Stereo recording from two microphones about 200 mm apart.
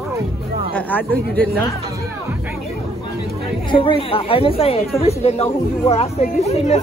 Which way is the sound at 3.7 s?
25° left (ahead or behind).